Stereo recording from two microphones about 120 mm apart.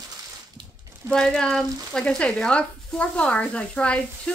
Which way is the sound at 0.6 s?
45° right (ahead or behind).